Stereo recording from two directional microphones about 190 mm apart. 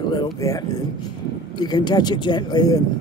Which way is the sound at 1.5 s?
20° left (ahead or behind).